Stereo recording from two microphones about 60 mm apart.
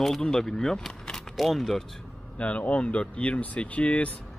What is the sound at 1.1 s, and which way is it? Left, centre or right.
Speech, centre.